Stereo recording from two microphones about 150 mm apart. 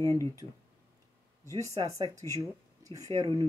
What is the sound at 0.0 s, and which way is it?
Speech, 20° left (ahead or behind).